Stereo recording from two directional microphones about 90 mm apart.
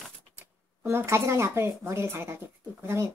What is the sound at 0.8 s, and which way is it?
A woman's voice, 30° right (ahead or behind).